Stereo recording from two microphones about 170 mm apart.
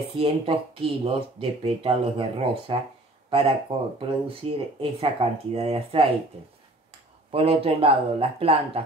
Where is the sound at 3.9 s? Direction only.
30° right (ahead or behind).